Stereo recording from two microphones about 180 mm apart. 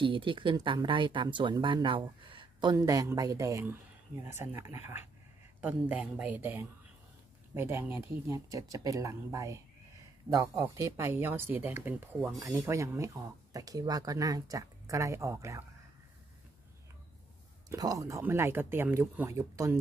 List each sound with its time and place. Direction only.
0.0 s speech: 30° right (ahead or behind)
17.6 s speech: 20° right (ahead or behind)